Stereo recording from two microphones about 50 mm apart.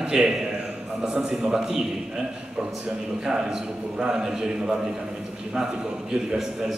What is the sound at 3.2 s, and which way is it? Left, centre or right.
A man's voice, centre.